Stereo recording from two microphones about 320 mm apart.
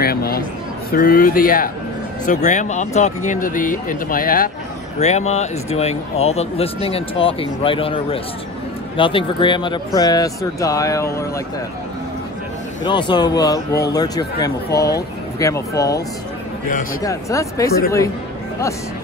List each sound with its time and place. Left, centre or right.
0.0 s a sound: left
0.9 s speech: left; by 11.4 s centre
12.8 s speech: centre
17.0 s speech: centre